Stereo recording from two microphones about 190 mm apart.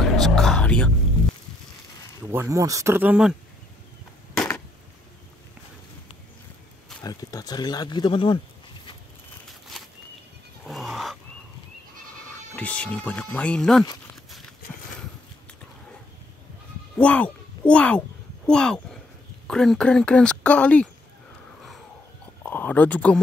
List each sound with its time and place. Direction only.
0.0 s music: centre (ahead or behind)
2.2 s speech: 15° right (ahead or behind)
4.3 s a sound: 5° left (ahead or behind)
7.0 s speech: 20° left (ahead or behind)
9.5 s a sound: centre (ahead or behind)
10.7 s fowl: centre (ahead or behind)
12.5 s speech: 5° left (ahead or behind)
17.0 s speech: 5° left (ahead or behind)
22.4 s speech: 10° left (ahead or behind)